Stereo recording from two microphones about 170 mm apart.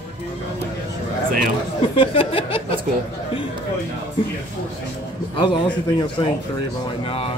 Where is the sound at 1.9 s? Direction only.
35° left (ahead or behind).